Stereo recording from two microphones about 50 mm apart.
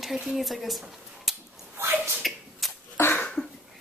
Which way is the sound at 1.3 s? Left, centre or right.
Centre.